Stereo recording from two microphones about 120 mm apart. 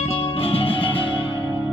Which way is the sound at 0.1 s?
50° left (ahead or behind).